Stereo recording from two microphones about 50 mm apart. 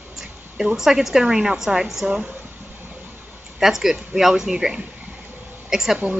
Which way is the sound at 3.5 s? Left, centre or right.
Centre.